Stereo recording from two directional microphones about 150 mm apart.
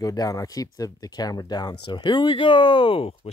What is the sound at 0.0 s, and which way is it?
Speech, 20° left (ahead or behind).